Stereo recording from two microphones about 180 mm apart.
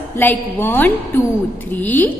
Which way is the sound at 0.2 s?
10° left (ahead or behind).